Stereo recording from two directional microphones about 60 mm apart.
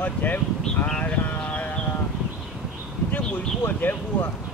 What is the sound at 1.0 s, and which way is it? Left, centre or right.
Clip-clop, left.